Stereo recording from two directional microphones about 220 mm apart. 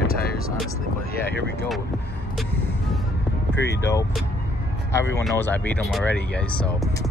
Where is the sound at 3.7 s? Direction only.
15° left (ahead or behind).